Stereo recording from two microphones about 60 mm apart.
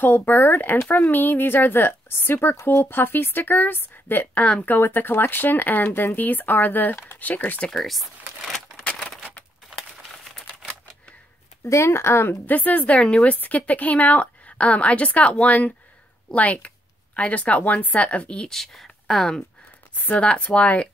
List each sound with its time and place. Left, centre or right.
0.0 s speech: left
4.6 s speech: left
7.7 s speech: centre
11.6 s speech: left
12.4 s a woman's voice: left
18.5 s speech: centre
20.0 s a woman's voice: left